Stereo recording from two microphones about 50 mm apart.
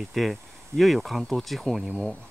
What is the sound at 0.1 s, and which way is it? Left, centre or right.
Speech, centre.